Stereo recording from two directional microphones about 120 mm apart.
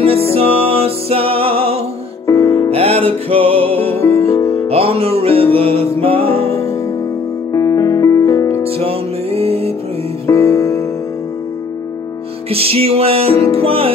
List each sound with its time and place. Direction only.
0.3 s music: 55° right (ahead or behind)
2.2 s music: 25° left (ahead or behind)
2.7 s music: 55° right (ahead or behind)
4.0 s music: 25° left (ahead or behind)
4.6 s music: 55° right (ahead or behind)
5.6 s mantra: 20° left (ahead or behind)
5.9 s music: 50° right (ahead or behind)
7.5 s music: 30° left (ahead or behind)
8.6 s music: 55° right (ahead or behind)
10.2 s music: 25° left (ahead or behind)
12.4 s music: 55° right (ahead or behind)
13.3 s music: 25° left (ahead or behind)
13.6 s music: 50° right (ahead or behind)